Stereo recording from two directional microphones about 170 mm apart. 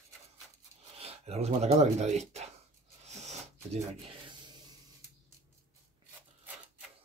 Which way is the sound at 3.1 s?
40° right (ahead or behind).